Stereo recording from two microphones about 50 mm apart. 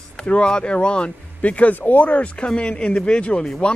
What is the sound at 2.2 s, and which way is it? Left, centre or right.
Speech, left.